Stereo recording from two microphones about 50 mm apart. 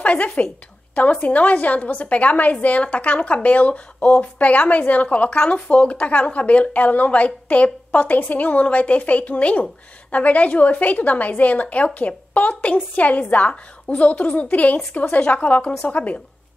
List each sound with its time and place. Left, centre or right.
0.0 s a woman's voice: left